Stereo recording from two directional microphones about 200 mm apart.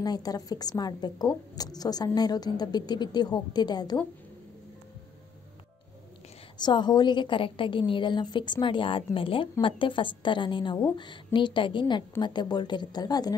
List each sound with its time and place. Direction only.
0.0 s a woman's voice: 20° left (ahead or behind)
6.6 s a woman's voice: 20° left (ahead or behind)